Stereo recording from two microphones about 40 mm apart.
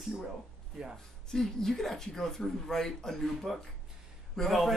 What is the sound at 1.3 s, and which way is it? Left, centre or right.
Speech, centre.